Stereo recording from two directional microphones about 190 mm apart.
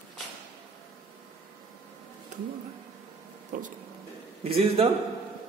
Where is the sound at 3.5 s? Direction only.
45° right (ahead or behind).